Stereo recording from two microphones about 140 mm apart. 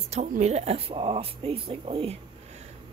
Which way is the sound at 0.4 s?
50° right (ahead or behind).